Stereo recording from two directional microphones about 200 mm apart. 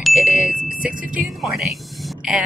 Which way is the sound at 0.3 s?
40° left (ahead or behind).